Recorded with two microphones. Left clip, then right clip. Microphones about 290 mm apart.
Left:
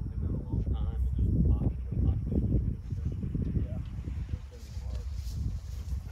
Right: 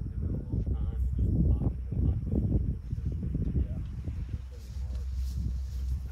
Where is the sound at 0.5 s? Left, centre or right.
Centre.